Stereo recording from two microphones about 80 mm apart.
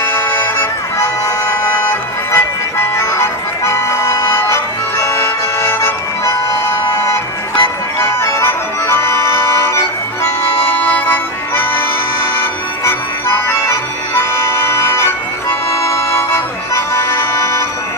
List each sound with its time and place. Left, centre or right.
0.0 s organ: left
7.6 s music: left
16.9 s accordion: left